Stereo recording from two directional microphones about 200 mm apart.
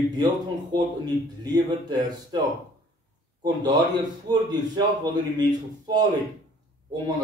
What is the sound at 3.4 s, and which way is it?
A man's voice, 20° right (ahead or behind).